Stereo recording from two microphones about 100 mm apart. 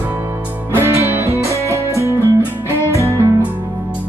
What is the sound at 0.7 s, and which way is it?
Music, 25° right (ahead or behind).